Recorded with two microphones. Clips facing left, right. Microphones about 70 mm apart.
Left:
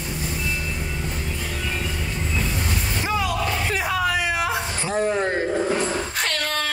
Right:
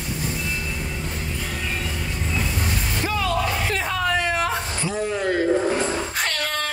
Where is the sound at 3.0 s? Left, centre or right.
Centre.